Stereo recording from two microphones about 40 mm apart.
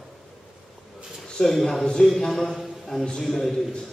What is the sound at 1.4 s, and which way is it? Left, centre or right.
A man's voice, centre.